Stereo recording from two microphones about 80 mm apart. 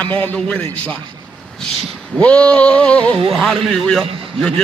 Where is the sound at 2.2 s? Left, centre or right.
Centre.